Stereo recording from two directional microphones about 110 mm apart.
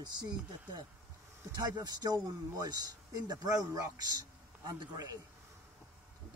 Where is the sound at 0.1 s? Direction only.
40° right (ahead or behind).